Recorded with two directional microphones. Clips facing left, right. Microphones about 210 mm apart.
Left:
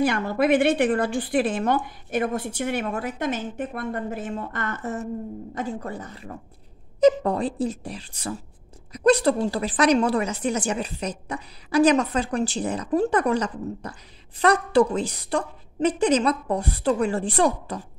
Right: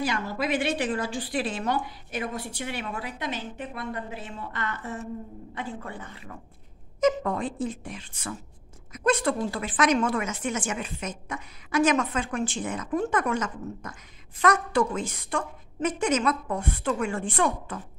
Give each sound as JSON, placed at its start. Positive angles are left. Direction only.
{"t": 0.0, "sound": "a woman's voice", "side_deg": 55}